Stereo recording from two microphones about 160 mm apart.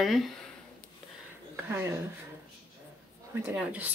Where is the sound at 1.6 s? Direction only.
15° right (ahead or behind).